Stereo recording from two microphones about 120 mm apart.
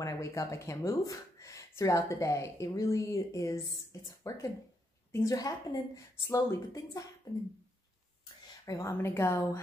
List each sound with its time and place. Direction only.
0.0 s speech: 25° left (ahead or behind)
8.6 s speech: 25° left (ahead or behind)